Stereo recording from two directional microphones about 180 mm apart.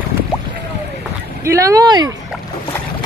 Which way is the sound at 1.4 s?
15° right (ahead or behind).